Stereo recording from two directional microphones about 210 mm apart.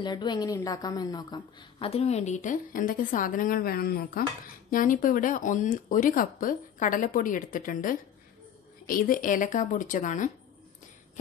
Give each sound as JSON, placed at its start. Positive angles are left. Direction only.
{"t": 0.0, "sound": "a woman's voice", "side_deg": 20}